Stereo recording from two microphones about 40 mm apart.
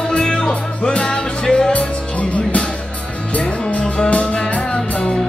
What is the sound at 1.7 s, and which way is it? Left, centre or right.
Music, left.